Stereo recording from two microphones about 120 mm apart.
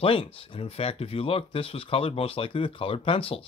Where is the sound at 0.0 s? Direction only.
50° left (ahead or behind).